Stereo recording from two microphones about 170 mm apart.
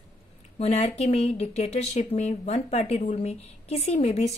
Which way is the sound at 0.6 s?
40° left (ahead or behind).